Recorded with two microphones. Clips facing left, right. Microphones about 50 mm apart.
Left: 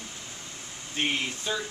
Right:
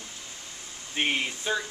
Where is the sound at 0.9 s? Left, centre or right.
Centre.